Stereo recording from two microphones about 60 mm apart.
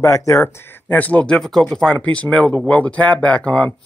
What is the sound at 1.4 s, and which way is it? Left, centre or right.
Speech, centre.